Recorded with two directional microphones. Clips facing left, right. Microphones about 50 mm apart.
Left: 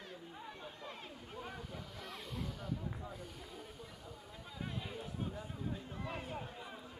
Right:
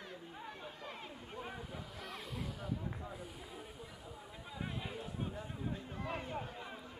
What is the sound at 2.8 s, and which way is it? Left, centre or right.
Snake, centre.